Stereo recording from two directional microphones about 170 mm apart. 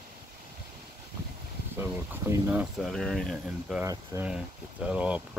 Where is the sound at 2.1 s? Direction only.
10° right (ahead or behind).